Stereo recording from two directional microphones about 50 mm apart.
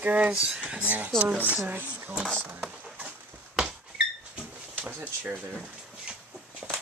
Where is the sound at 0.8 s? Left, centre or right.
Right.